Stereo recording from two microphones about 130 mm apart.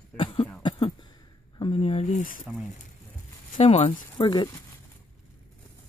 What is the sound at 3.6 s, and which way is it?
Speech, 55° left (ahead or behind).